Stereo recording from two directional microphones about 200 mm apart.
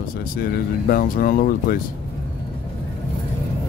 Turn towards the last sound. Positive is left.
turn(degrees=45)  # may be behind; listen again after turning